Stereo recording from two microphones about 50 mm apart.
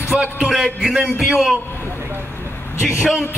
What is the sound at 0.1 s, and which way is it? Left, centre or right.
A man's voice, right.